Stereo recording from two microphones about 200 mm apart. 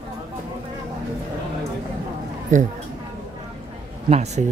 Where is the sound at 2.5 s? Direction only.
40° right (ahead or behind).